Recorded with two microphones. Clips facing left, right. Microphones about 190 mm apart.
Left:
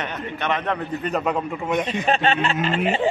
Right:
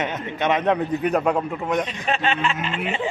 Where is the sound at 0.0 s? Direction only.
20° right (ahead or behind); by 1.8 s 5° right (ahead or behind).